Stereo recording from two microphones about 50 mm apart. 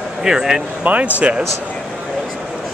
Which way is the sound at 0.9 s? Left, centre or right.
Right.